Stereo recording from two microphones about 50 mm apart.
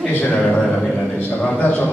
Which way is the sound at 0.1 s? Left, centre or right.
Left.